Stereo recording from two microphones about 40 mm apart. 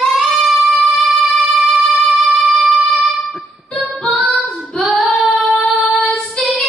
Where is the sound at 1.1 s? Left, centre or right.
Centre.